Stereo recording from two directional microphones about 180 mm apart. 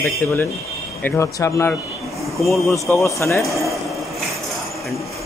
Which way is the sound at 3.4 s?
Centre (ahead or behind).